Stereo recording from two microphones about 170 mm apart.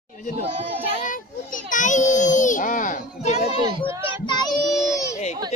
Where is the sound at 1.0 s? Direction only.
50° left (ahead or behind).